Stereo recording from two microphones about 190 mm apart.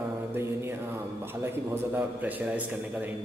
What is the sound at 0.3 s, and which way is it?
Mantra, 15° right (ahead or behind).